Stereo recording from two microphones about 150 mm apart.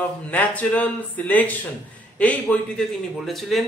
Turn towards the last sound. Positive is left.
turn(degrees=0)  # may be behind; listen again after turning